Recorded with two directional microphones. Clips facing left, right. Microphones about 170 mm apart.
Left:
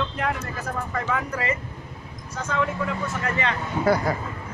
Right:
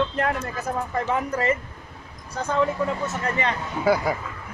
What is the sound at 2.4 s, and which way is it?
Speech, 35° right (ahead or behind).